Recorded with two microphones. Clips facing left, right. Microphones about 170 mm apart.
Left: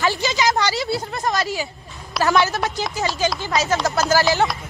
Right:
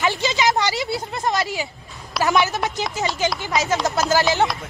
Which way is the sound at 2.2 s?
20° right (ahead or behind).